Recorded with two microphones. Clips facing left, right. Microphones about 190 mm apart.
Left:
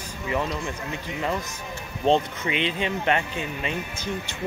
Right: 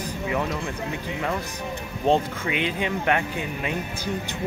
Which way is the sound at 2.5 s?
10° right (ahead or behind).